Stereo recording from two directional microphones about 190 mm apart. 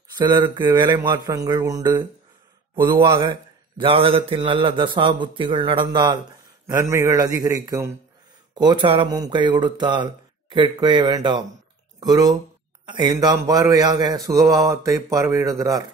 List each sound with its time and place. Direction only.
0.1 s mantra: 20° right (ahead or behind)
0.7 s a man's voice: 25° right (ahead or behind)